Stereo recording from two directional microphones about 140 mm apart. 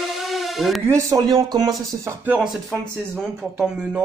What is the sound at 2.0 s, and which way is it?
Speech, 10° right (ahead or behind).